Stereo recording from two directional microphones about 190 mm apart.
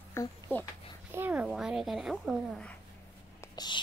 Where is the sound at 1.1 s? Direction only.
10° right (ahead or behind).